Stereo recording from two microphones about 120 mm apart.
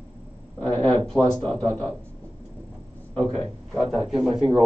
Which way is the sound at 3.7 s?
Centre (ahead or behind).